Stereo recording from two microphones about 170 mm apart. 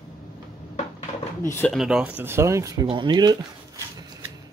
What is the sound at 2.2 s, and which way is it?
Speech, 15° right (ahead or behind).